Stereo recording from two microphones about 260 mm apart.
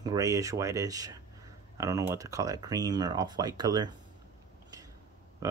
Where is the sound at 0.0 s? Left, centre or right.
Centre.